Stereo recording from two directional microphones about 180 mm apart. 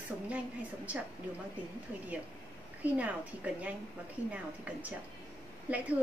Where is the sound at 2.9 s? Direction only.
10° right (ahead or behind).